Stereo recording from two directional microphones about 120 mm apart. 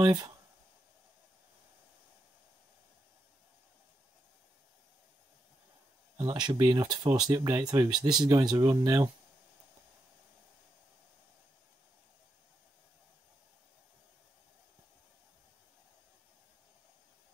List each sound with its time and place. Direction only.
0.0 s speech: 35° right (ahead or behind)
6.1 s speech: 35° right (ahead or behind)